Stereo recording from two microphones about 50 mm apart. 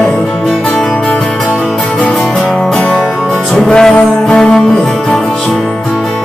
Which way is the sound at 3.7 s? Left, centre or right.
Centre.